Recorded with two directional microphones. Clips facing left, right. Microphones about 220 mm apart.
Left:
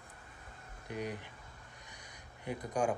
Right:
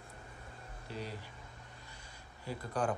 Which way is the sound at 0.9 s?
15° left (ahead or behind).